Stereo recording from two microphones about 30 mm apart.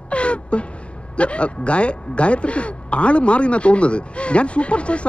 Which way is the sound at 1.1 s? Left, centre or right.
Left.